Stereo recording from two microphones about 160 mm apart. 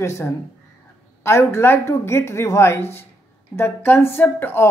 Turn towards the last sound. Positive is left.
turn(degrees=15)  # may be behind; listen again after turning